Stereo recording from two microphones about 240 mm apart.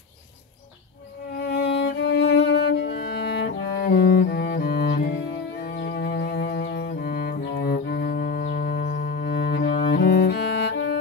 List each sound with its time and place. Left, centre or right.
1.4 s music: left
3.4 s cello: left
9.2 s cello: left